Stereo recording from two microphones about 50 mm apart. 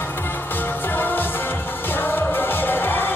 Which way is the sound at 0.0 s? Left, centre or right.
Left.